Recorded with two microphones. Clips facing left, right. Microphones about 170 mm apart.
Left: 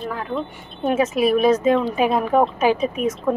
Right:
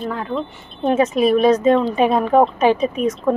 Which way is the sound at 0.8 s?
5° left (ahead or behind).